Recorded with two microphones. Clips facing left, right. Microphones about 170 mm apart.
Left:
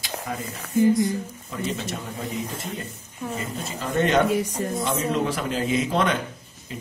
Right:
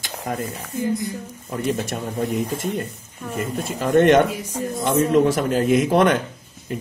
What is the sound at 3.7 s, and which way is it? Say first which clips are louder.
Speech: right 7 dB; 55° right (ahead or behind).